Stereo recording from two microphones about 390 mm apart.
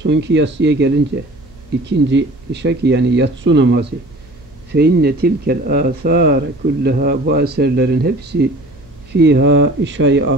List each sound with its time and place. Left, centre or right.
0.0 s speech: right